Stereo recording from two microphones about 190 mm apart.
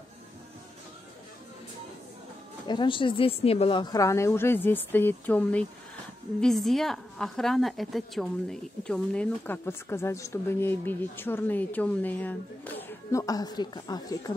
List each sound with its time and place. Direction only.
2.6 s a woman's voice: 25° left (ahead or behind)